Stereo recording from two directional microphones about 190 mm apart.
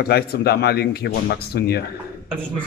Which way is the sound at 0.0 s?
55° left (ahead or behind).